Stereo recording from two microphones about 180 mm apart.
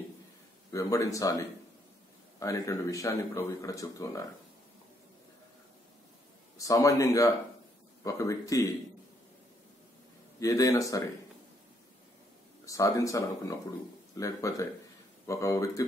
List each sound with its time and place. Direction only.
0.7 s speech: 15° left (ahead or behind)
2.4 s speech: 20° left (ahead or behind)
6.6 s speech: 20° left (ahead or behind)
10.4 s speech: 20° left (ahead or behind)
12.6 s speech: 20° left (ahead or behind)